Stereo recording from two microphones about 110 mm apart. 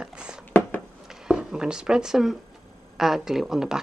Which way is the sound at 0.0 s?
10° right (ahead or behind).